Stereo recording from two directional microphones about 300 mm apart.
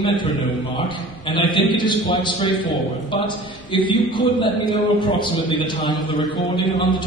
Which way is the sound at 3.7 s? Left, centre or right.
Centre.